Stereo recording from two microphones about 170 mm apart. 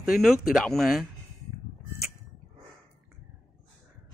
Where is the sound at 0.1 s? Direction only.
Centre (ahead or behind).